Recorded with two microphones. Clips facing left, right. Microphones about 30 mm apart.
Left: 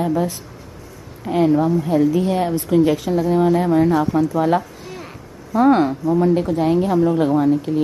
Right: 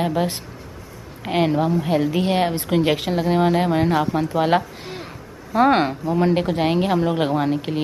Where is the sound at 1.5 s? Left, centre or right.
Right.